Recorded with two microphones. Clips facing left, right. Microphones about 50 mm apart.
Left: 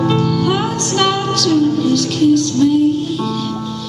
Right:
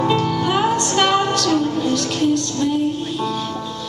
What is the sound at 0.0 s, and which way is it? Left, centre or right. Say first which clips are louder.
Music: left 3 dB; centre.